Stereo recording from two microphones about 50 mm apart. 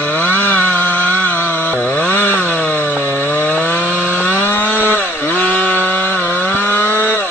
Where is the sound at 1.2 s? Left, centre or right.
Left.